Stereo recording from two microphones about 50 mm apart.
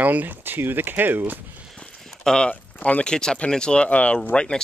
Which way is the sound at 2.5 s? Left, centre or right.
Left.